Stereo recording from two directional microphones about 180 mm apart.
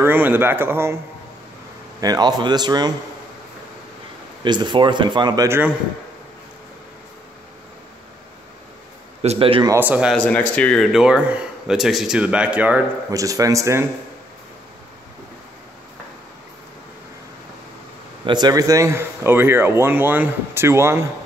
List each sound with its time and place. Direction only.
0.0 s a man's voice: 10° right (ahead or behind)
2.0 s speech: 20° right (ahead or behind)
4.4 s speech: 25° right (ahead or behind)
9.2 s a man's voice: 35° right (ahead or behind)
9.7 s a man's voice: 10° right (ahead or behind)
10.1 s a man's voice: 10° left (ahead or behind)
13.1 s a man's voice: 20° right (ahead or behind)
18.2 s a man's voice: 25° right (ahead or behind)